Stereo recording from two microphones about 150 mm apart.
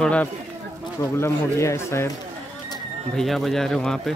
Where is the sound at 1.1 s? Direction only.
20° left (ahead or behind).